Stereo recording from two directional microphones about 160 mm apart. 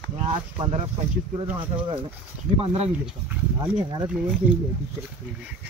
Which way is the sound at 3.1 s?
5° right (ahead or behind).